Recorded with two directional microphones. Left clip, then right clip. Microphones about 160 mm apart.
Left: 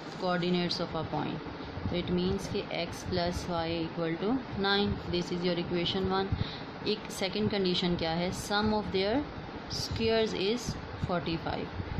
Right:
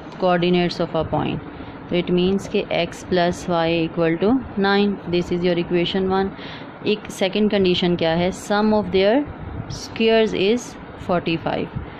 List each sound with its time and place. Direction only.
0.2 s speech: 40° right (ahead or behind)